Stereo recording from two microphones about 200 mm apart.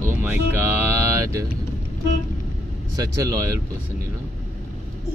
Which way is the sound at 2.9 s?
15° right (ahead or behind).